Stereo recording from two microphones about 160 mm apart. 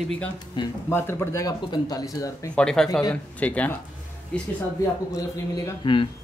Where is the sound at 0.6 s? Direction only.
30° left (ahead or behind).